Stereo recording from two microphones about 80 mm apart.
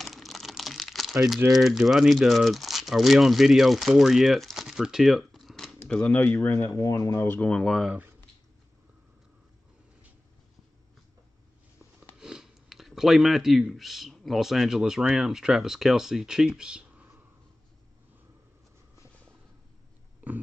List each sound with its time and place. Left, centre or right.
0.0 s crumpling: centre
1.5 s speech: centre
5.9 s speech: centre
6.8 s speech: left
7.2 s speech: left
7.5 s speech: centre
12.2 s speech: centre